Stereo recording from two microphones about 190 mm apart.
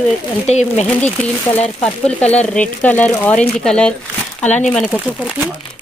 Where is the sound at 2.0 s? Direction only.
5° left (ahead or behind).